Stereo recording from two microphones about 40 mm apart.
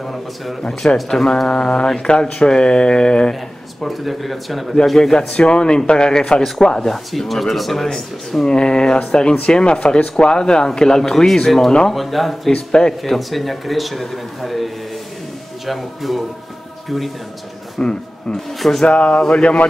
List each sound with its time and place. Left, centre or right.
0.0 s a man's voice: centre
0.6 s speech: centre
3.8 s speech: centre
4.9 s speech: centre
5.3 s speech: left; by 8.5 s centre
8.5 s speech: left; by 12.4 s centre
12.5 s speech: left
13.0 s speech: centre
17.7 s speech: centre
18.9 s speech: left